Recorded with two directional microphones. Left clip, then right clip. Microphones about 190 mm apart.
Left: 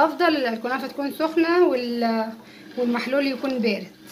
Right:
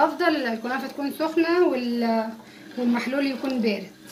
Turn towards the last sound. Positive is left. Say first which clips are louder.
# left 2 dB
turn(degrees=30)  # may be behind; listen again after turning